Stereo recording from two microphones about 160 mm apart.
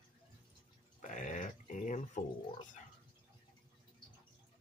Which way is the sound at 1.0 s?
50° left (ahead or behind).